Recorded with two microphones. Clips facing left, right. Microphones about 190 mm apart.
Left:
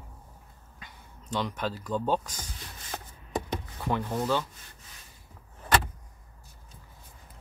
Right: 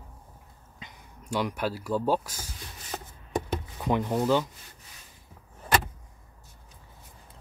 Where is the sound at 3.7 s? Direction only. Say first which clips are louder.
Right 4 dB; 15° right (ahead or behind).